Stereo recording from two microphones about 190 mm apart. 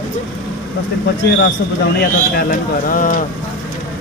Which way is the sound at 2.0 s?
50° left (ahead or behind).